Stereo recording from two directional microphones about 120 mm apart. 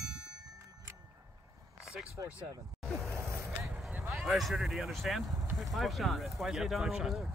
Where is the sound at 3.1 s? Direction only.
20° right (ahead or behind).